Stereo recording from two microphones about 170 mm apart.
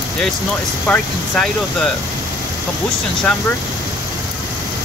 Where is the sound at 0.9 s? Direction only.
5° left (ahead or behind).